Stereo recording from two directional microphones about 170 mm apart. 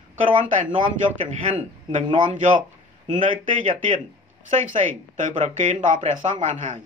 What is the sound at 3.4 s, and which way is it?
A man's voice, 50° right (ahead or behind).